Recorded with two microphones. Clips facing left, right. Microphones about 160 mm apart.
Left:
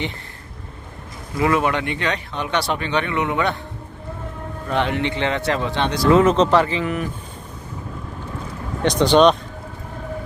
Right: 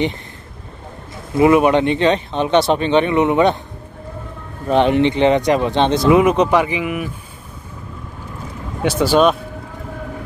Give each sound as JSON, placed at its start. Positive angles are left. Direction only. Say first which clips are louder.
{"t": 1.3, "sound": "speech", "louder": "right 7 dB", "side_deg": -20}
{"t": 4.6, "sound": "speech", "louder": "right 8 dB", "side_deg": -20}
{"t": 8.8, "sound": "speech", "louder": "even", "side_deg": -5}